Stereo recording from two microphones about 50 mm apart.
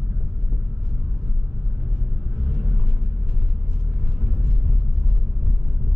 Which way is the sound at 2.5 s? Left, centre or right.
Centre.